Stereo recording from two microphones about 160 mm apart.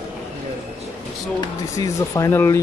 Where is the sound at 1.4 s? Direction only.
20° left (ahead or behind).